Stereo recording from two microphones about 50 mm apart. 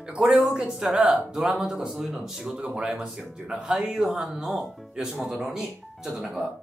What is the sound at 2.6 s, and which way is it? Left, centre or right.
Speech, centre.